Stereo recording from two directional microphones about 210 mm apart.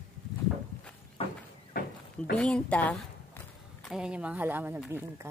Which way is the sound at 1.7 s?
45° left (ahead or behind).